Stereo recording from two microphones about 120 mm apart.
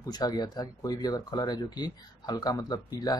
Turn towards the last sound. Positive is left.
turn(degrees=35)  # may be behind; listen again after turning